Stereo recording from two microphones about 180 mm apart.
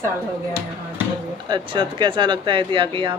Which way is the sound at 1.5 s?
25° right (ahead or behind).